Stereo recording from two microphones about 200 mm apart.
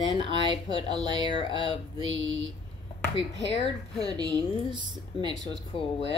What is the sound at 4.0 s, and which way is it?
Speech, 20° right (ahead or behind).